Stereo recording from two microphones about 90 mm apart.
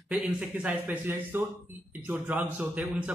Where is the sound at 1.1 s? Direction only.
25° right (ahead or behind).